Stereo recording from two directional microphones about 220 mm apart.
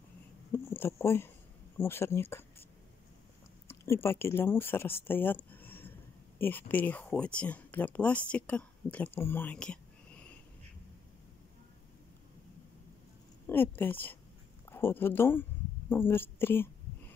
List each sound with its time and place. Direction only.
0.5 s speech: 10° left (ahead or behind)
3.6 s speech: 10° left (ahead or behind)
13.5 s speech: 10° left (ahead or behind)